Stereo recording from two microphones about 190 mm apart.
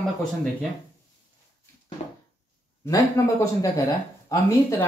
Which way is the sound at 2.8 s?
15° left (ahead or behind).